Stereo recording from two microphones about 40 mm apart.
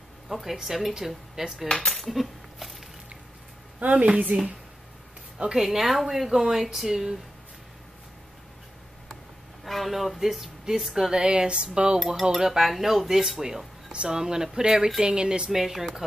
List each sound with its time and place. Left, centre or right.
0.3 s speech: centre
1.7 s cutlery: centre
2.0 s cutlery: centre
3.8 s a woman's voice: right
5.6 s speech: centre
9.7 s speech: centre
11.1 s cutlery: right
12.2 s speech: centre
15.0 s cutlery: centre
15.5 s speech: centre